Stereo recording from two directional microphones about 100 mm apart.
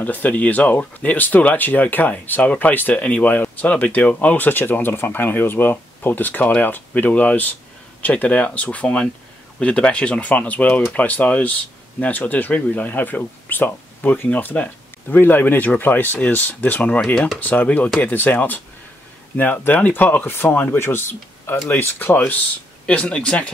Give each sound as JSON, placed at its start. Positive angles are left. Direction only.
{"t": 0.0, "sound": "speech", "side_deg": 15}
{"t": 17.4, "sound": "speech", "side_deg": 15}